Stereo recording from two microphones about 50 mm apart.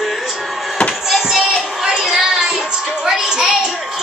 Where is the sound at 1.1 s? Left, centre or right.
Centre.